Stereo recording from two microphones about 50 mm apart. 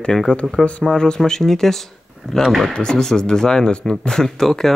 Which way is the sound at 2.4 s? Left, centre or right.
Centre.